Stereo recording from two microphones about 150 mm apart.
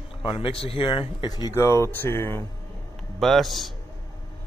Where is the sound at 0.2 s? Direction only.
35° left (ahead or behind); by 2.4 s 15° left (ahead or behind).